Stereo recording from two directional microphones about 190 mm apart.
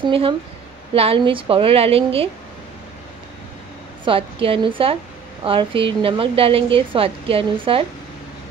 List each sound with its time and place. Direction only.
0.0 s a woman's voice: 30° right (ahead or behind)
4.0 s a woman's voice: 30° right (ahead or behind)